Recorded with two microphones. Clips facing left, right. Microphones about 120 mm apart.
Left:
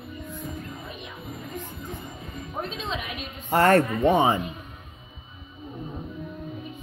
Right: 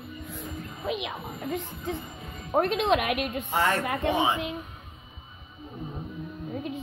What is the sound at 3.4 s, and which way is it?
Speech, 55° left (ahead or behind).